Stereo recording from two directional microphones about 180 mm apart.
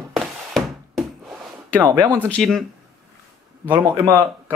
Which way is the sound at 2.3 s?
Centre (ahead or behind).